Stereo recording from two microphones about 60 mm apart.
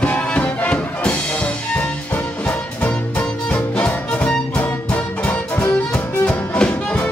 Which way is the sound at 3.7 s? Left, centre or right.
Left.